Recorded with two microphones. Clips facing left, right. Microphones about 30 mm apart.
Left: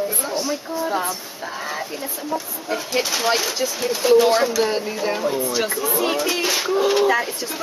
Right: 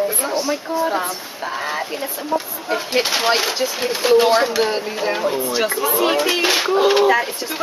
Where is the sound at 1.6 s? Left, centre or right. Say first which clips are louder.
Right 4 dB; right.